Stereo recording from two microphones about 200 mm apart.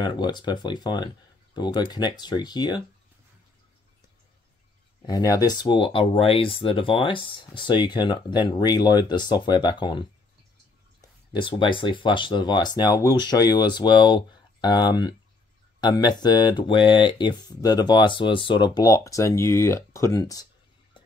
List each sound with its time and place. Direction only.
0.0 s speech: 20° left (ahead or behind)
5.0 s speech: 15° left (ahead or behind)